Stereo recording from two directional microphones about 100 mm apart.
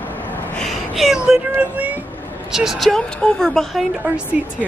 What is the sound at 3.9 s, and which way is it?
Speech, 10° right (ahead or behind).